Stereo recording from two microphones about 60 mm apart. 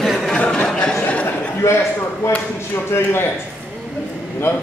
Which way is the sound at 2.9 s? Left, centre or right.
Left.